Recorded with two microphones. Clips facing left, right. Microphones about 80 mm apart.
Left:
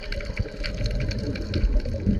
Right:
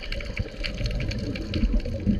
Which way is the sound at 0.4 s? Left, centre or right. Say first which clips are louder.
Left 1 dB; centre.